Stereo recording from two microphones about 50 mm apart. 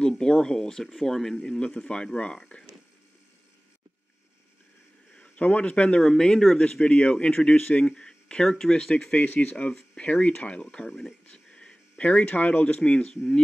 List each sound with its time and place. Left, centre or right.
0.1 s speech: centre
1.4 s speech: centre
5.1 s speech: left
7.8 s speech: centre
8.9 s speech: left
10.9 s speech: centre
11.2 s a sound: centre
12.0 s speech: left